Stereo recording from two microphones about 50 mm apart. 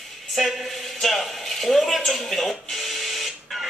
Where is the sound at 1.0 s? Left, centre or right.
Centre.